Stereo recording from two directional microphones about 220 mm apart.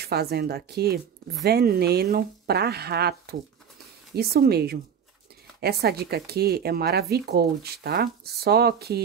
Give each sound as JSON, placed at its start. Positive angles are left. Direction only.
{"t": 0.0, "sound": "speech", "side_deg": -45}